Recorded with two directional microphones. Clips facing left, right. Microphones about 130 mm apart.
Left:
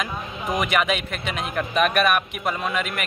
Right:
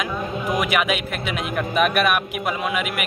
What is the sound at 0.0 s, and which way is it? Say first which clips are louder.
A man's voice: right 4 dB; centre (ahead or behind).